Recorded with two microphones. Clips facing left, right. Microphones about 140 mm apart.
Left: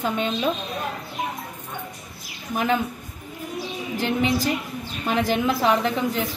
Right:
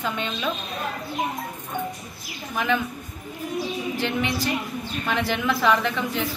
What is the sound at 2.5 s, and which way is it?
Speech, 40° left (ahead or behind).